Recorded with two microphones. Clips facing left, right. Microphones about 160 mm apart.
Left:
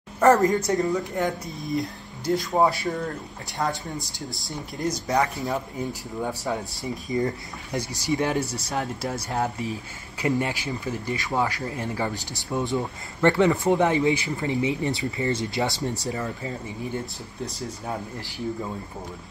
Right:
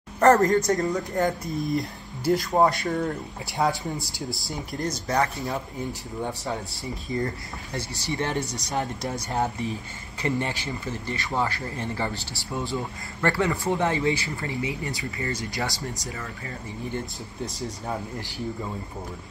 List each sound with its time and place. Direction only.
0.2 s speech: centre (ahead or behind)
4.8 s speech: 15° left (ahead or behind)
6.5 s speech: 20° left (ahead or behind)